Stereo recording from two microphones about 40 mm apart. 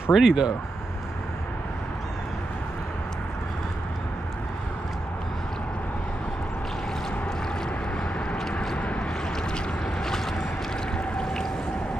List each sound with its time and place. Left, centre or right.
0.1 s speech: centre
8.7 s boat: left